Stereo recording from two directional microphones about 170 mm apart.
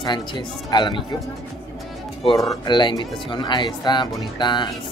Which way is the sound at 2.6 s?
25° left (ahead or behind).